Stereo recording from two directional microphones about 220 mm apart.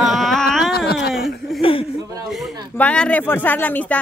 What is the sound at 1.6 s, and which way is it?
Chuckle, 25° left (ahead or behind).